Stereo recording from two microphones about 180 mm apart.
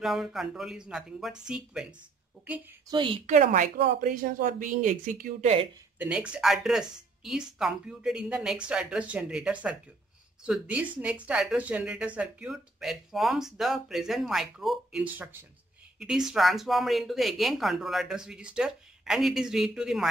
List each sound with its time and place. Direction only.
0.0 s speech: centre (ahead or behind)
2.9 s speech: 30° right (ahead or behind)
3.3 s a woman's voice: 45° right (ahead or behind)
5.9 s speech: 5° right (ahead or behind)